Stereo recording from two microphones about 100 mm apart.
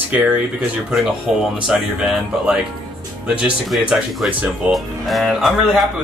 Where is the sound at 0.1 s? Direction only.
15° right (ahead or behind).